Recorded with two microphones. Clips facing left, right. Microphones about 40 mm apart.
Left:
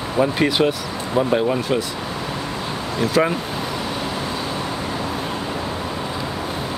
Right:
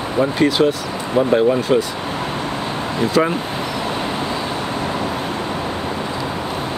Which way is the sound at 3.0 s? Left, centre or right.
Right.